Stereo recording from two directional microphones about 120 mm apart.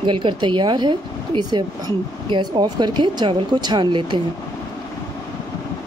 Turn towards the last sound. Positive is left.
turn(degrees=-40)  # may be behind; listen again after turning